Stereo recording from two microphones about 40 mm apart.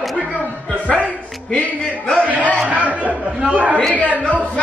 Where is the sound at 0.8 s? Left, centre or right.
Right.